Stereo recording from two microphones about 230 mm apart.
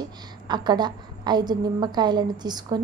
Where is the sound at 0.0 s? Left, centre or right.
Centre.